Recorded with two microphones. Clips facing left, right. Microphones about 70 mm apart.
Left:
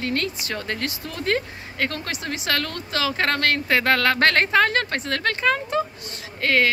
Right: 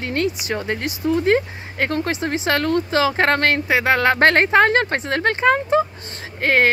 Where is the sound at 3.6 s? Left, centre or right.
Centre.